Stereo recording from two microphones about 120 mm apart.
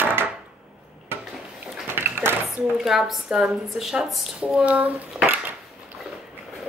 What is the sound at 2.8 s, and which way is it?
Speech, centre (ahead or behind).